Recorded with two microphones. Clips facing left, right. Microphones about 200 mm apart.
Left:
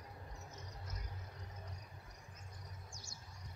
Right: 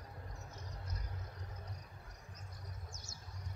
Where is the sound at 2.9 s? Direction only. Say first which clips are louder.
Right 1 dB; 20° right (ahead or behind).